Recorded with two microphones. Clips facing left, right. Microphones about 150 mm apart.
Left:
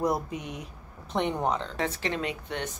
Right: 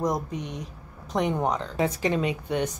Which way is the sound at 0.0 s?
10° left (ahead or behind).